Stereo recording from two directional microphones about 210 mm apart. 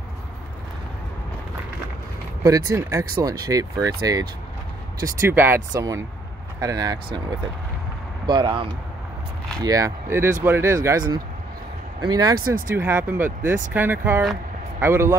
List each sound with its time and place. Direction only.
2.4 s speech: 15° right (ahead or behind)
8.3 s speech: 20° right (ahead or behind)